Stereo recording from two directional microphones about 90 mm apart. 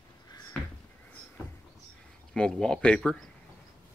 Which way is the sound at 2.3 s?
5° left (ahead or behind).